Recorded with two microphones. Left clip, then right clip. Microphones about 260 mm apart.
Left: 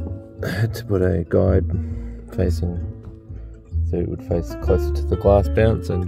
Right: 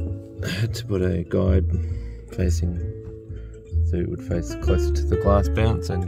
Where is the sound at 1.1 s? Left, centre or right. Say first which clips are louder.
Left 5 dB; left.